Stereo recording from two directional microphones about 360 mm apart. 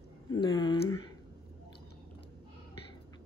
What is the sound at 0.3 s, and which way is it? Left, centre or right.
Speech, centre.